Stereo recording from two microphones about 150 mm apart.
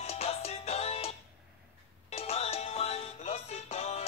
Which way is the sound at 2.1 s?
40° left (ahead or behind).